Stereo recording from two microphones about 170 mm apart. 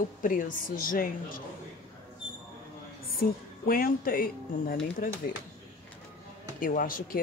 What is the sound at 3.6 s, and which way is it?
A woman's voice, 60° left (ahead or behind).